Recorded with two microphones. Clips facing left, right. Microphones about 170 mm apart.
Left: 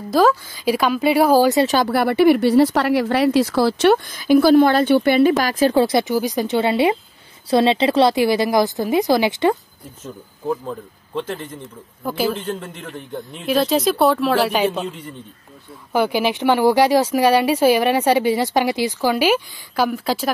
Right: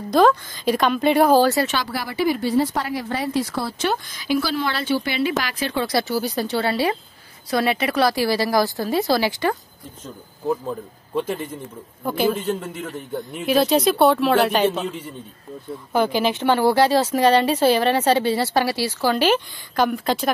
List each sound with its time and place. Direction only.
0.1 s speech: 5° left (ahead or behind)
1.9 s a woman's voice: 60° left (ahead or behind); by 5.9 s 45° left (ahead or behind)
5.9 s a woman's voice: 20° left (ahead or behind)
10.5 s speech: 10° right (ahead or behind)
12.0 s speech: centre (ahead or behind)
15.9 s speech: 10° left (ahead or behind)